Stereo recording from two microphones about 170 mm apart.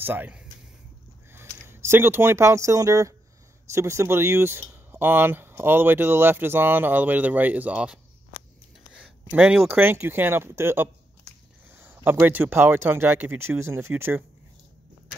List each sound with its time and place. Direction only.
0.0 s speech: 10° right (ahead or behind)